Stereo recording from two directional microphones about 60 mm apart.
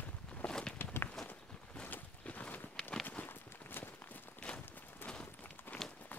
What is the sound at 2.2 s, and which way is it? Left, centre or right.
Walk, left.